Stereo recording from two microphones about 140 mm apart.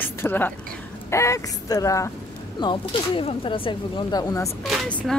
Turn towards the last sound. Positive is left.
turn(degrees=0)  # may be behind; listen again after turning